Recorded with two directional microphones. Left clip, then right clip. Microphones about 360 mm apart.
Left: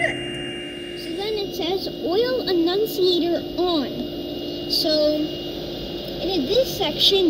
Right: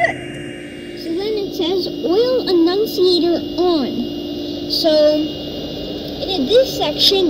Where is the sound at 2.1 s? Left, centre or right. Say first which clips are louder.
Right 6 dB; right.